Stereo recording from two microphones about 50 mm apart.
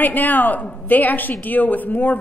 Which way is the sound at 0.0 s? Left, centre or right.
Left.